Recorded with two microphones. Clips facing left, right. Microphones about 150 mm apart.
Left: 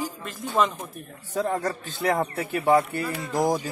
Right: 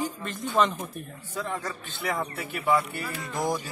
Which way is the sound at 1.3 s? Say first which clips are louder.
Left 7 dB; 45° left (ahead or behind).